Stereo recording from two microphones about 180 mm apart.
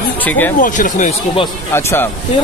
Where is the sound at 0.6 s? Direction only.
45° left (ahead or behind).